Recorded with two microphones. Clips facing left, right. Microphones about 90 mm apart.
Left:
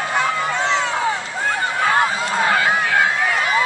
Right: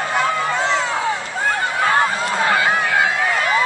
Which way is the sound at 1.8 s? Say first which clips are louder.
Even; centre (ahead or behind).